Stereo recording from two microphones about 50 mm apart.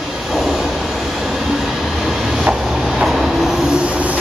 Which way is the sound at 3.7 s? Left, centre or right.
Right.